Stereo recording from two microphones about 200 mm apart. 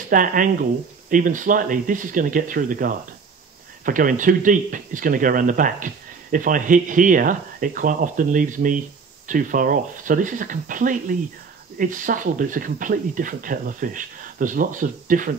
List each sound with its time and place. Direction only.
0.1 s speech: 45° right (ahead or behind)